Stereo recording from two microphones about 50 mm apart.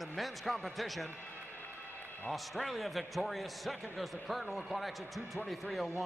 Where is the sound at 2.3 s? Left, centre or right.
Centre.